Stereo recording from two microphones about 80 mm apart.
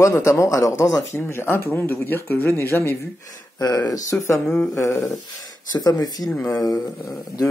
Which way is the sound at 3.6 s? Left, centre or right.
Left.